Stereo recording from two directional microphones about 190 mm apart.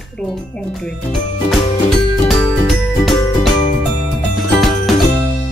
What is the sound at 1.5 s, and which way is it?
Music, centre (ahead or behind).